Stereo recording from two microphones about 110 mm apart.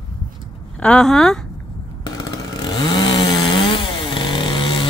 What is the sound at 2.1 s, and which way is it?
Chainsaw, 45° left (ahead or behind).